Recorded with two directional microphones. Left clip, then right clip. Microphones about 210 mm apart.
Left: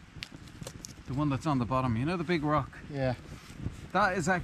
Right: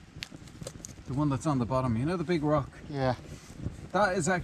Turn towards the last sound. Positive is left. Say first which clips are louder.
# right 1 dB
turn(degrees=0)  # may be behind; listen again after turning